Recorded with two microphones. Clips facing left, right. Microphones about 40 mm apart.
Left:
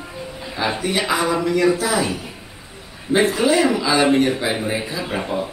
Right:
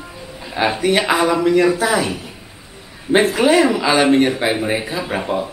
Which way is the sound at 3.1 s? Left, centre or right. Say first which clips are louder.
Right 3 dB; right.